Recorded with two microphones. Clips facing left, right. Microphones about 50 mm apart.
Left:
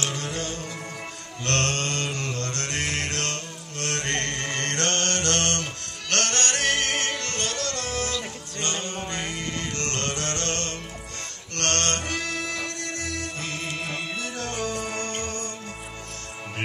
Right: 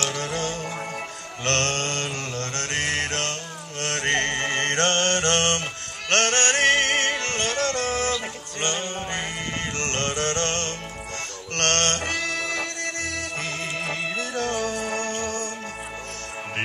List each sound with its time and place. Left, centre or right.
0.1 s music: right
1.9 s mantra: right
2.7 s music: right
3.8 s mantra: right
11.5 s music: right